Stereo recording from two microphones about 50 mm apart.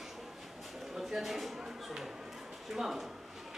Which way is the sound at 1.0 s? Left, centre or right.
Centre.